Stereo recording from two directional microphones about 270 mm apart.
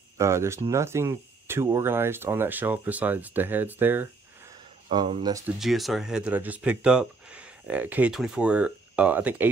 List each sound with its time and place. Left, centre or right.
0.2 s speech: centre
4.8 s speech: centre
5.6 s speech: centre